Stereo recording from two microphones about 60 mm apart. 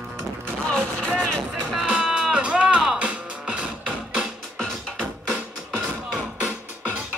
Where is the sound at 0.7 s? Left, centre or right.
Centre.